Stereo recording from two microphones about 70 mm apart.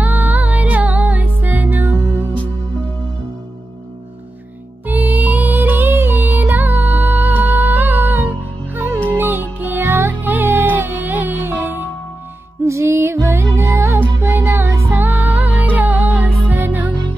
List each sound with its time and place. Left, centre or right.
0.0 s music: right
4.8 s music: right
12.6 s music: right